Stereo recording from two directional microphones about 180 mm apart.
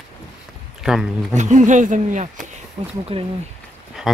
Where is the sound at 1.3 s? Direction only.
40° right (ahead or behind).